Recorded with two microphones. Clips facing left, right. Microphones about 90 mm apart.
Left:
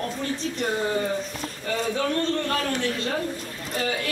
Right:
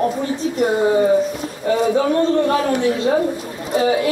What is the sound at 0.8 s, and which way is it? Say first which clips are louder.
A woman's voice: right 11 dB; 20° right (ahead or behind).